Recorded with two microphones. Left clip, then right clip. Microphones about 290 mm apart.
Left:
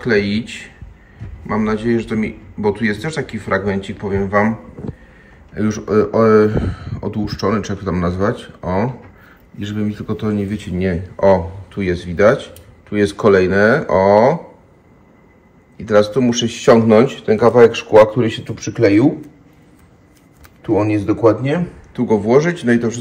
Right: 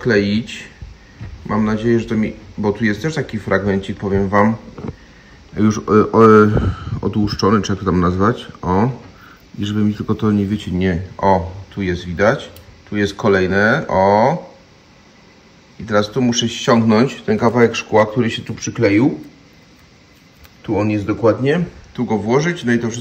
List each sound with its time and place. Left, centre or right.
0.0 s speech: centre
5.6 s speech: centre
15.8 s speech: centre
20.6 s speech: centre